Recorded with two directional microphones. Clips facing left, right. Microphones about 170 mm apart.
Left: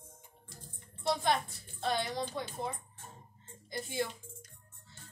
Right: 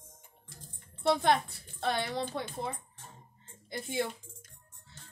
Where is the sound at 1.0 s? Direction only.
60° right (ahead or behind).